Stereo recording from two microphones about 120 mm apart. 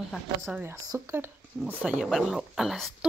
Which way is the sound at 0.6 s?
25° right (ahead or behind).